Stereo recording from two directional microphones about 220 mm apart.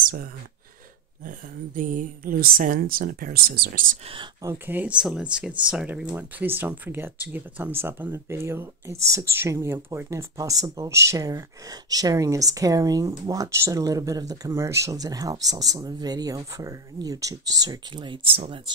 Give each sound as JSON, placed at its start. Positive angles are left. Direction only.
{"t": 0.0, "sound": "speech", "side_deg": -40}
{"t": 1.8, "sound": "speech", "side_deg": -35}
{"t": 4.1, "sound": "speech", "side_deg": -15}